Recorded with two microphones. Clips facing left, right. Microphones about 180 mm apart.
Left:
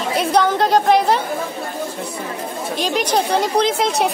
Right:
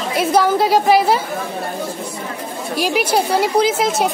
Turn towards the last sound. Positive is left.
turn(degrees=0)  # may be behind; listen again after turning